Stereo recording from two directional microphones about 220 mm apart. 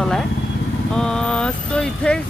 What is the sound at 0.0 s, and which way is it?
Vehicle, centre (ahead or behind).